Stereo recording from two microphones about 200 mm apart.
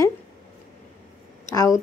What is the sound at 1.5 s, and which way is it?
Speech, 15° left (ahead or behind).